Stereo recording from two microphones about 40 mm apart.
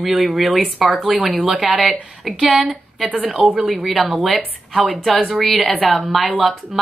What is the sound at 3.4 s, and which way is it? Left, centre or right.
Speech, right.